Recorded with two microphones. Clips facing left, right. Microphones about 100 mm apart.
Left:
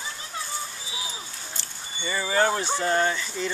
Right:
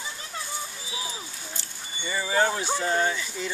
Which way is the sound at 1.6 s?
10° right (ahead or behind).